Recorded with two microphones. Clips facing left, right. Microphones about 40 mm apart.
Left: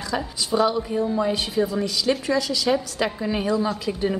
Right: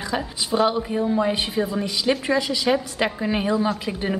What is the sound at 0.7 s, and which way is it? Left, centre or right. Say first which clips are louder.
A woman's voice: right 1 dB; right.